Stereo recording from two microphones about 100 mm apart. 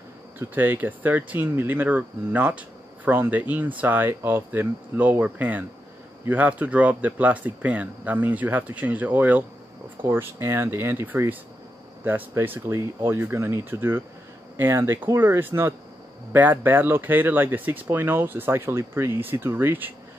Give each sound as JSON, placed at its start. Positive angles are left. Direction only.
{"t": 0.4, "sound": "speech", "side_deg": -20}